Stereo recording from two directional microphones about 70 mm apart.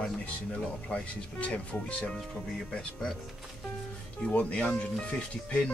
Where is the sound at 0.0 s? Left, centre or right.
Centre.